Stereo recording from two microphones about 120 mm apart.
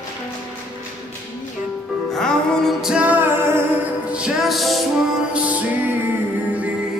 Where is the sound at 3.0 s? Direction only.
15° right (ahead or behind).